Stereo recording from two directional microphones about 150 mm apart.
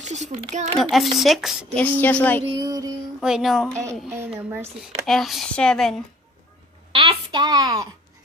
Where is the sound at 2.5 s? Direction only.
25° right (ahead or behind).